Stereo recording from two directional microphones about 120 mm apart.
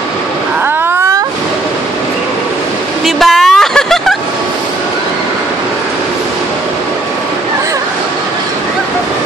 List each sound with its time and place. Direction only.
3.2 s vehicle: 5° left (ahead or behind)